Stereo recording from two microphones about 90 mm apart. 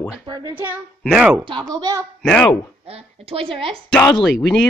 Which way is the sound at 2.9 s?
90° right.